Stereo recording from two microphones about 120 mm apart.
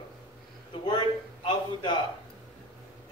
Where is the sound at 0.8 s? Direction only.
40° left (ahead or behind).